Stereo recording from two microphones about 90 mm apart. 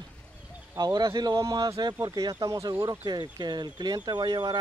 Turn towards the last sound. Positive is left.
turn(degrees=-50)  # may be behind; listen again after turning